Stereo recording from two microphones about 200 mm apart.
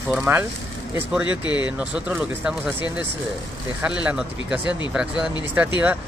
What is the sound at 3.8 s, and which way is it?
Speech, 5° right (ahead or behind).